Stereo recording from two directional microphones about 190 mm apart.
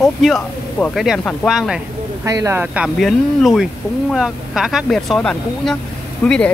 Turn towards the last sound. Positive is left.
turn(degrees=5)  # may be behind; listen again after turning